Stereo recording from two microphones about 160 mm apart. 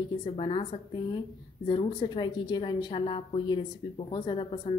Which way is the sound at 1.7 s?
30° left (ahead or behind).